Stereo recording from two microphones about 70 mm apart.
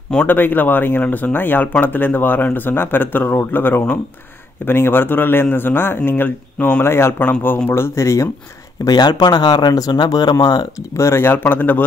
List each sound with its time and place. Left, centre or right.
0.3 s a man's voice: left
7.2 s speech: left
7.7 s a man's voice: left
8.8 s speech: left
11.0 s a man's voice: left
11.3 s speech: left